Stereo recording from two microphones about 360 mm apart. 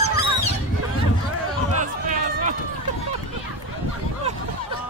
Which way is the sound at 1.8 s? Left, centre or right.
Right.